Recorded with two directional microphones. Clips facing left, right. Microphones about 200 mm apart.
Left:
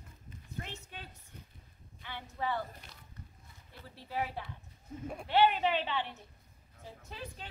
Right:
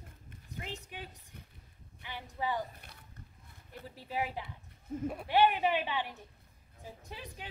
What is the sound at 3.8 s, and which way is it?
A woman's voice, 15° right (ahead or behind).